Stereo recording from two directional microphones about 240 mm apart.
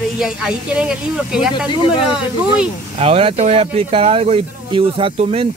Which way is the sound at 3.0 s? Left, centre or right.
Right.